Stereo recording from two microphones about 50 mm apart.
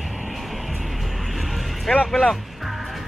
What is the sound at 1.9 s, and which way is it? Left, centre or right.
Music, centre.